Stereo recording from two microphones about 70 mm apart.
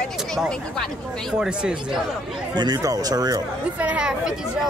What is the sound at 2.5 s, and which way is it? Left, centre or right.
Speech, right.